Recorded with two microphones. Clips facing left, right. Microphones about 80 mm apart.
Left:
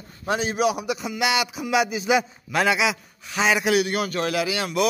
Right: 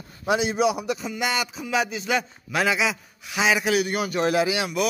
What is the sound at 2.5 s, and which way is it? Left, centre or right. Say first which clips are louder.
A man's voice: left 1 dB; centre.